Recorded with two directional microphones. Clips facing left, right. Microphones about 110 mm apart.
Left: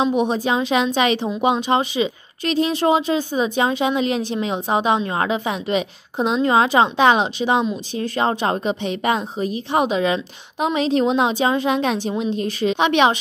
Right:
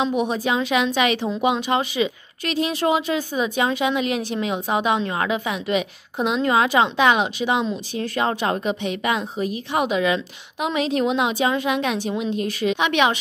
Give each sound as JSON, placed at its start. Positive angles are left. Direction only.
{"t": 0.0, "sound": "a woman's voice", "side_deg": 25}